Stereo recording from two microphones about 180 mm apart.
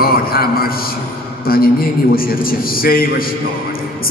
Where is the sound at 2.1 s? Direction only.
55° left (ahead or behind).